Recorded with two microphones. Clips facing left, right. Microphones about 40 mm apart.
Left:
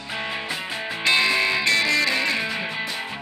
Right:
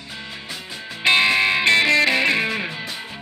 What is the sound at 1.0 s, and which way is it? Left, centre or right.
Music, right.